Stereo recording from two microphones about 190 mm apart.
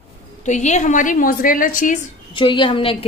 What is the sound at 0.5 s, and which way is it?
A woman's voice, 40° left (ahead or behind).